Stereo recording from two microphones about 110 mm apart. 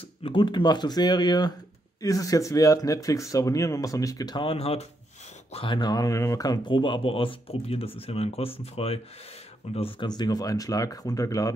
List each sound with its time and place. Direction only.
0.2 s speech: 55° left (ahead or behind); by 4.4 s 30° left (ahead or behind)
4.4 s speech: 60° left (ahead or behind)
5.8 s speech: 35° left (ahead or behind); by 10.0 s 55° left (ahead or behind)
10.0 s speech: 40° left (ahead or behind)